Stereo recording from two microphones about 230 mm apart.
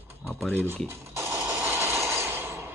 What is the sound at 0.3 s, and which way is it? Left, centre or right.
Speech, centre.